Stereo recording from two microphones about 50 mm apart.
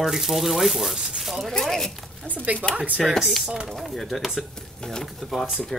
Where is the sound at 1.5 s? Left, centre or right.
Centre.